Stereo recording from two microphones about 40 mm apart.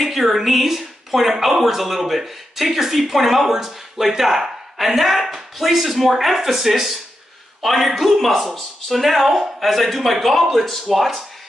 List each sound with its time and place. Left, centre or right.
0.0 s speech: centre